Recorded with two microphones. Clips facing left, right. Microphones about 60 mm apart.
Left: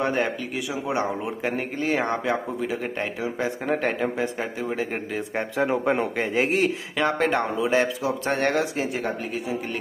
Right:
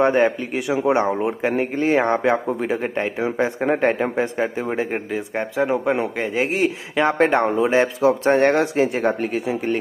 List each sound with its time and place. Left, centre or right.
0.0 s a man's voice: right
5.1 s speech: centre
7.0 s a man's voice: right
8.5 s a man's voice: right